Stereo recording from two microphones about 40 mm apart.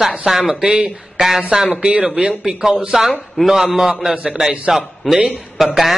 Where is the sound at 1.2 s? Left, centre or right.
Centre.